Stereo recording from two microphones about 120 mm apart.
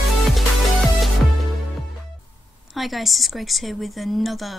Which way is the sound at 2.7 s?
Centre (ahead or behind).